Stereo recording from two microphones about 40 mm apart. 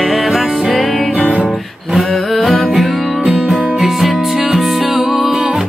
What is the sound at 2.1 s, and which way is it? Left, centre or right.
Music, centre.